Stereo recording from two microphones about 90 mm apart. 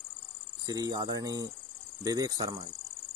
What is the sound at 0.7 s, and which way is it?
Speech, 45° right (ahead or behind).